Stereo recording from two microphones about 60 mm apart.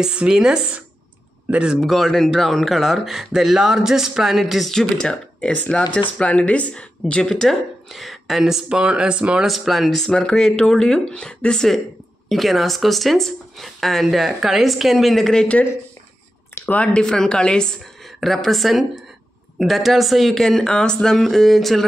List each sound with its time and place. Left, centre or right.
0.0 s speech: centre
1.8 s speech: centre
9.4 s speech: centre
16.6 s speech: left
17.0 s speech: centre
18.2 s speech: centre